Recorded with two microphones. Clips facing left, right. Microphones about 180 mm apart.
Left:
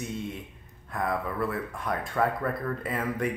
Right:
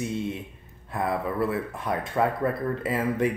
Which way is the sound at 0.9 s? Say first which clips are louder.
Right 3 dB; 25° right (ahead or behind).